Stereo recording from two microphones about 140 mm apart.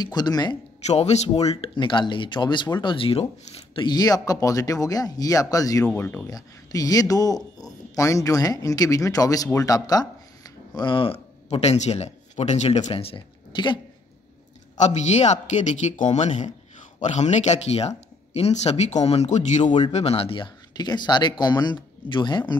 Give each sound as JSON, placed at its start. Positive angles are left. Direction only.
{"t": 0.0, "sound": "speech", "side_deg": 30}
{"t": 0.8, "sound": "speech", "side_deg": 50}
{"t": 3.8, "sound": "speech", "side_deg": 30}
{"t": 5.9, "sound": "speech", "side_deg": 10}
{"t": 6.2, "sound": "speech", "side_deg": 25}
{"t": 11.4, "sound": "speech", "side_deg": 50}
{"t": 14.8, "sound": "speech", "side_deg": 55}